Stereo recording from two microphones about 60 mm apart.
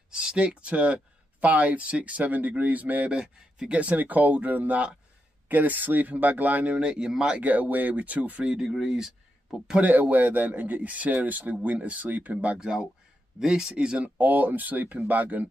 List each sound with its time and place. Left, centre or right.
0.1 s speech: centre
3.2 s speech: centre
3.7 s speech: right
7.4 s speech: right
8.5 s speech: centre
9.8 s speech: right
13.4 s speech: centre
14.0 s speech: right